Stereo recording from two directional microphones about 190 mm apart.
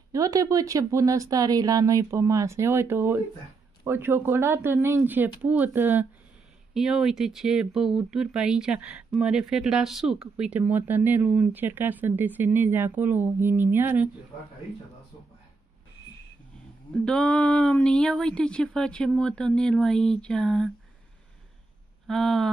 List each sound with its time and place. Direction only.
0.1 s speech: 20° right (ahead or behind)
17.0 s speech: 5° left (ahead or behind)
22.0 s speech: centre (ahead or behind)